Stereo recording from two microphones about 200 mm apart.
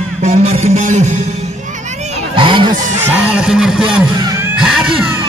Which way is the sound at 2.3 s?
25° right (ahead or behind).